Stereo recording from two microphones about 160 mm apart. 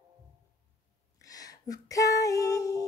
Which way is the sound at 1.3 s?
20° left (ahead or behind).